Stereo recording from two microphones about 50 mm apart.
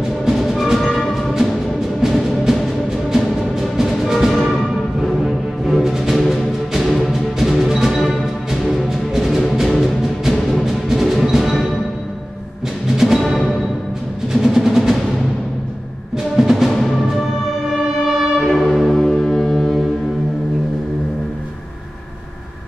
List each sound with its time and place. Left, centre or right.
0.2 s music: centre
12.9 s music: centre
14.3 s percussion: centre
16.3 s music: centre
18.2 s brass instrument: centre
19.2 s foghorn: centre